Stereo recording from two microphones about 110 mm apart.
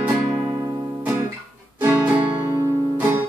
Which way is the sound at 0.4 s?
35° right (ahead or behind).